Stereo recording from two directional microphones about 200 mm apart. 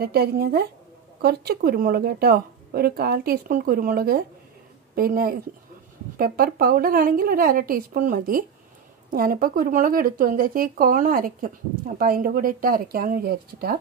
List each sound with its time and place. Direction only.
0.0 s speech: 50° right (ahead or behind)